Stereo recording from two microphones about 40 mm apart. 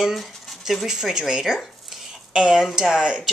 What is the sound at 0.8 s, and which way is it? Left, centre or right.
A woman's voice, centre.